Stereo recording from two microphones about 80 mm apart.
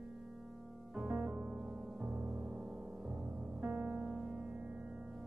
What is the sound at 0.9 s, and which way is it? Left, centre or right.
Music, centre.